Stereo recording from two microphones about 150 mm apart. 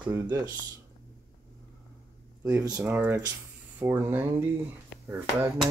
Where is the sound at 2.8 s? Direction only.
15° right (ahead or behind).